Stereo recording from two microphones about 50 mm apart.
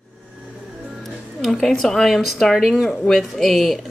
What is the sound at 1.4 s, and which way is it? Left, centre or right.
Speech, centre.